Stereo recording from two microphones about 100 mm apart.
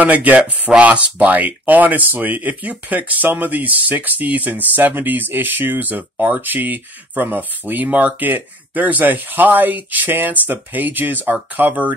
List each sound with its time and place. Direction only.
0.0 s speech: 15° right (ahead or behind)